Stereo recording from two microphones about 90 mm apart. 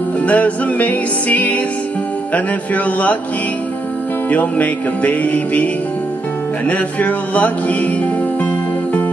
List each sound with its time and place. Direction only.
0.2 s music: 15° left (ahead or behind)
4.3 s music: 15° left (ahead or behind)
6.7 s music: 15° left (ahead or behind)